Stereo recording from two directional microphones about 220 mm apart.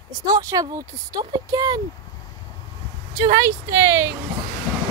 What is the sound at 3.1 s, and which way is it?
Speech, 15° right (ahead or behind).